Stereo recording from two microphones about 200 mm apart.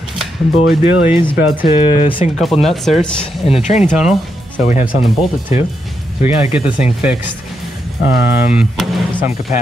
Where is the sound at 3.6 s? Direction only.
35° left (ahead or behind).